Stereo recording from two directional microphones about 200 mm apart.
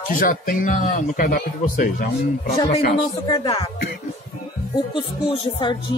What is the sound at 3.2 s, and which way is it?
Speech, 25° left (ahead or behind).